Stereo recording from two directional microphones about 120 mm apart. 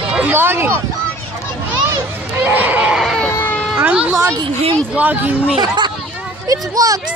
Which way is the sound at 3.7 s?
10° right (ahead or behind).